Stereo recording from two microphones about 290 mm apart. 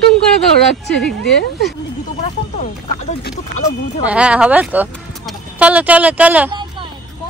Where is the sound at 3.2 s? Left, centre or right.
Left.